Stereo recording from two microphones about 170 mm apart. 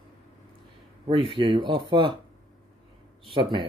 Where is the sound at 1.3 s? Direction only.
30° right (ahead or behind).